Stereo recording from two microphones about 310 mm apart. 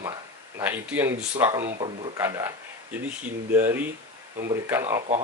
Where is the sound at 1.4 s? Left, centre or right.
Centre.